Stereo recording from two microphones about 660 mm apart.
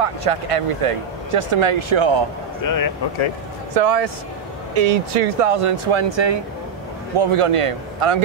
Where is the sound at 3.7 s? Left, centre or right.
Right.